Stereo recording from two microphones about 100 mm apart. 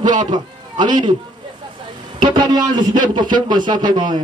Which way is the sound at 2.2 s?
50° right (ahead or behind).